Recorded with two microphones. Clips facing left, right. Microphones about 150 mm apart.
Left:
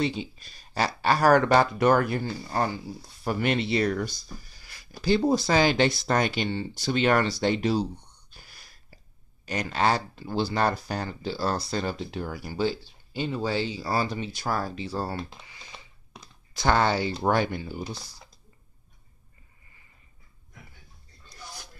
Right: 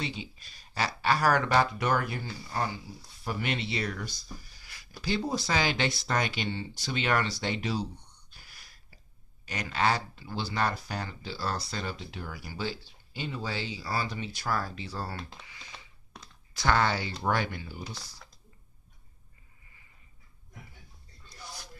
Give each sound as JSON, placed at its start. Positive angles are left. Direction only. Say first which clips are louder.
{"t": 0.0, "sound": "speech", "louder": "left 9 dB", "side_deg": 40}
{"t": 8.4, "sound": "whispering", "louder": "left 4 dB", "side_deg": 35}
{"t": 9.5, "sound": "speech", "louder": "left 4 dB", "side_deg": 40}
{"t": 15.1, "sound": "speech", "louder": "left 6 dB", "side_deg": 5}
{"t": 16.5, "sound": "speech", "louder": "left 4 dB", "side_deg": 30}